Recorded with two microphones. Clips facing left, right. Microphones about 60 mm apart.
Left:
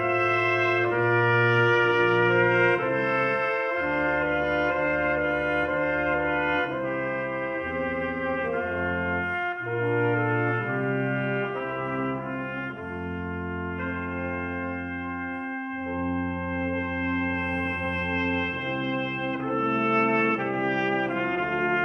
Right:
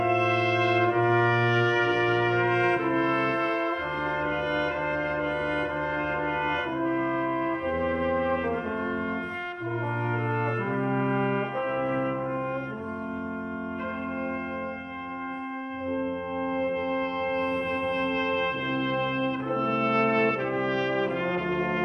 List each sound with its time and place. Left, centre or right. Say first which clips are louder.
0.0 s brass instrument: even; left
5.9 s brass instrument: left 3 dB; left
9.8 s brass instrument: left 7 dB; left
10.8 s brass instrument: right 1 dB; left
17.8 s brass instrument: right 1 dB; left